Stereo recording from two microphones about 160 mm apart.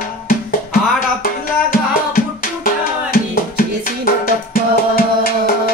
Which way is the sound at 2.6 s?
60° left (ahead or behind).